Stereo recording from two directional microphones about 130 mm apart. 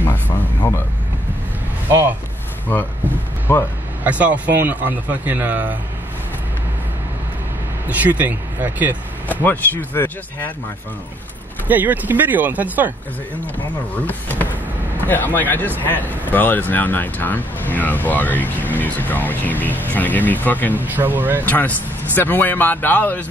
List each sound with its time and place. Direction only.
1.9 s speech: 20° right (ahead or behind)
3.5 s speech: 15° left (ahead or behind)
4.0 s speech: 10° right (ahead or behind)
7.9 s speech: 10° right (ahead or behind)
9.3 s speech: 15° left (ahead or behind)
11.6 s speech: 15° right (ahead or behind)
13.9 s speech: 15° left (ahead or behind)
20.8 s speech: 15° right (ahead or behind)
21.5 s speech: 15° left (ahead or behind)